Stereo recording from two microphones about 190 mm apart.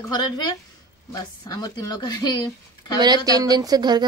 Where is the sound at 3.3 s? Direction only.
20° right (ahead or behind).